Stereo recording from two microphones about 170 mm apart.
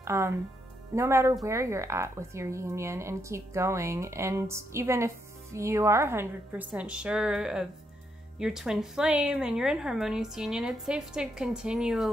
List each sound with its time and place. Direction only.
0.0 s a woman's voice: 15° right (ahead or behind)